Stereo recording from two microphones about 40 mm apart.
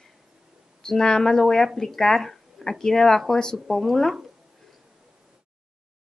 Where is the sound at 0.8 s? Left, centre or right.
Centre.